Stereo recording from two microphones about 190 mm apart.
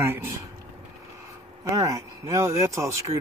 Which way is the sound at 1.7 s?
15° right (ahead or behind).